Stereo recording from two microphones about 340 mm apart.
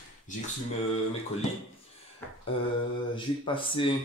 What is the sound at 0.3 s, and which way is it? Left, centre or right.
Speech, left.